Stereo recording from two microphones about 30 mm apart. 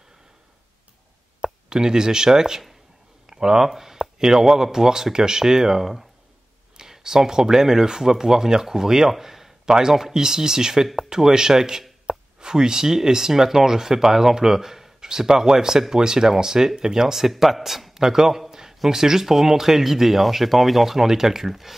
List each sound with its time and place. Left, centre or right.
1.7 s speech: right
3.3 s a sound: right
3.6 s speech: centre
7.0 s speech: centre
17.9 s a man's voice: centre
18.5 s a sound: centre
18.9 s speech: centre